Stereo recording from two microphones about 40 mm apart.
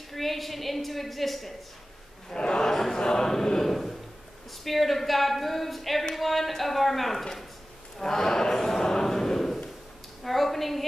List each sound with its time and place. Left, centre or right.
0.1 s a woman's voice: centre
2.3 s a man's voice: left
2.7 s chant: centre
3.0 s a sound: centre
4.6 s a woman's voice: centre